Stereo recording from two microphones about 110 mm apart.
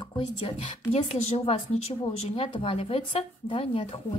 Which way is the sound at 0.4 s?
70° left (ahead or behind).